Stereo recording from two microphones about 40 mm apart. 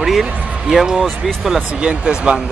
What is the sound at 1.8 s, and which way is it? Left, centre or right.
Speech, right.